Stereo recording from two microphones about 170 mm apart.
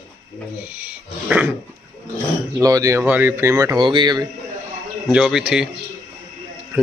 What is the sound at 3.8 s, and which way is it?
Speech, 25° right (ahead or behind).